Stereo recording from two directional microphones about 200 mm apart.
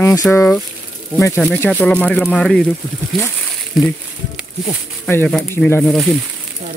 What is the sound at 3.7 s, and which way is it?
Speech, centre (ahead or behind).